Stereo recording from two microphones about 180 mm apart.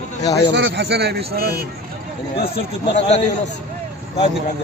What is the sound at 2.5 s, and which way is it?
Speech, 35° left (ahead or behind).